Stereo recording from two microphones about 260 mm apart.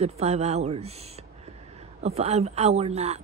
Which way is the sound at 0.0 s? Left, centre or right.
Right.